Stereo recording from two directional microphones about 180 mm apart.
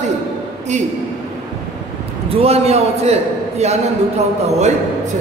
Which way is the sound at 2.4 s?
35° right (ahead or behind).